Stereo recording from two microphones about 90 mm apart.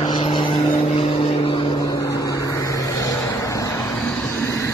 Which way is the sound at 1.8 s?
40° left (ahead or behind).